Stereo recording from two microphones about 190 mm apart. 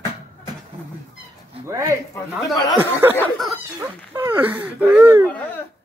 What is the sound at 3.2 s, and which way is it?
Speech, centre (ahead or behind).